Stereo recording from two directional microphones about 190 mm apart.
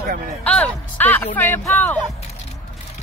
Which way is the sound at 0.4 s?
5° left (ahead or behind).